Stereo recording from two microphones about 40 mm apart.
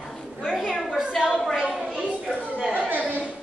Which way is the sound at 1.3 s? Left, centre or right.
Centre.